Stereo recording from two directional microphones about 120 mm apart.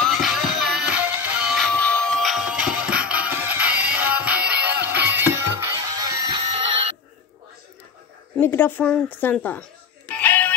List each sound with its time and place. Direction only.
0.0 s music: 5° right (ahead or behind)
1.7 s music: 10° left (ahead or behind); by 5.7 s 20° right (ahead or behind)
5.9 s music: 35° right (ahead or behind)
6.4 s a sound: 50° right (ahead or behind)
8.4 s a woman's voice: 15° left (ahead or behind)
10.1 s music: 15° left (ahead or behind)